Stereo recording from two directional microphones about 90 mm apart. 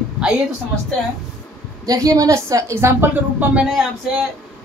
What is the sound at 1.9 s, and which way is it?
A woman's voice, 40° right (ahead or behind).